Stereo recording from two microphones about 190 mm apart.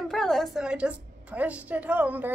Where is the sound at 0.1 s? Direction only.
Centre (ahead or behind).